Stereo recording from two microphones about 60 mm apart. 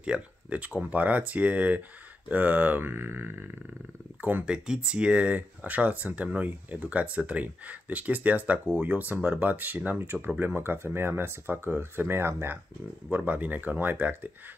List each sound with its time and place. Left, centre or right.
0.0 s speech: centre
2.9 s speech: right
4.5 s speech: centre; by 12.5 s right
13.1 s speech: right